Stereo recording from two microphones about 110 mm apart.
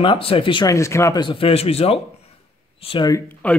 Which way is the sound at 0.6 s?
25° left (ahead or behind).